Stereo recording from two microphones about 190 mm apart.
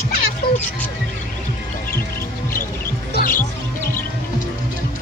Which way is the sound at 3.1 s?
45° left (ahead or behind).